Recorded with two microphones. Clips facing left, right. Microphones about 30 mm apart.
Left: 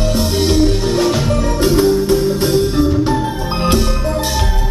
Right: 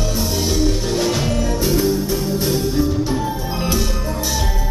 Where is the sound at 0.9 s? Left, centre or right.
Centre.